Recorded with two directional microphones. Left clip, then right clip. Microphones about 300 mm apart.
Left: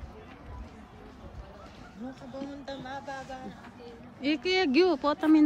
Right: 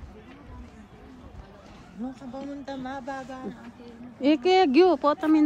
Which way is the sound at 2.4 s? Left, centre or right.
Centre.